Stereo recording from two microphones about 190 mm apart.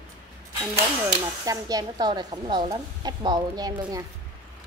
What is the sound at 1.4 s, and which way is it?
Speech, 20° right (ahead or behind).